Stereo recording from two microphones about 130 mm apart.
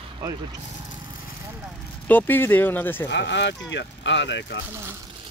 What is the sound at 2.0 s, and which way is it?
Speech, 15° left (ahead or behind).